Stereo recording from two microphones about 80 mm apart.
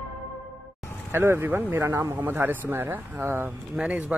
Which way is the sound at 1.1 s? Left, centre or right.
Right.